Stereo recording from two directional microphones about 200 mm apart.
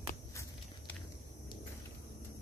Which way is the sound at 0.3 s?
15° left (ahead or behind).